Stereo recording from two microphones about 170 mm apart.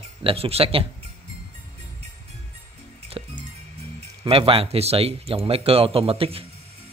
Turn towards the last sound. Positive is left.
turn(degrees=-35)  # may be behind; listen again after turning